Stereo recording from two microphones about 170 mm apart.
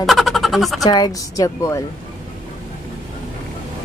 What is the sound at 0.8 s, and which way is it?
Speech, 25° left (ahead or behind).